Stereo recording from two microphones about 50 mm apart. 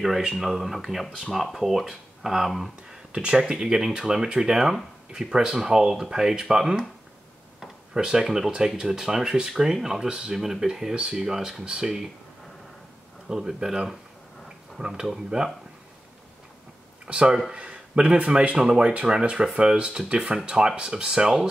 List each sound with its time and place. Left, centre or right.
0.3 s speech: centre
3.1 s speech: right
13.3 s speech: centre
17.0 s speech: centre
18.7 s speech: centre